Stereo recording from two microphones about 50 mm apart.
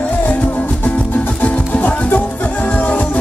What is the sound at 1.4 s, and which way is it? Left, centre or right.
Music, left.